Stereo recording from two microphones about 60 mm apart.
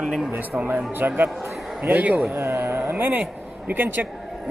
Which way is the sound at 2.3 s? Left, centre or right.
Right.